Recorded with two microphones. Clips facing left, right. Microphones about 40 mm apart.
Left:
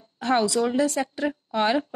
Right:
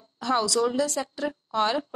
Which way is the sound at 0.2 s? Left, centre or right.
Left.